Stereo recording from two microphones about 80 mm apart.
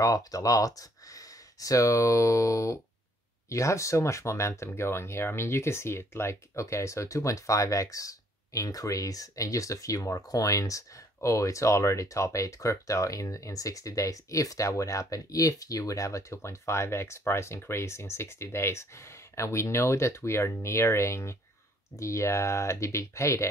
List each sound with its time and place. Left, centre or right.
0.0 s speech: left